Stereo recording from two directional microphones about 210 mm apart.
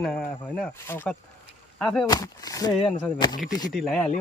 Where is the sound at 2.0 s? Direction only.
20° left (ahead or behind).